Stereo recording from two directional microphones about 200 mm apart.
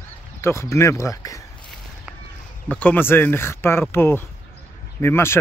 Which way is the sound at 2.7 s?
10° left (ahead or behind).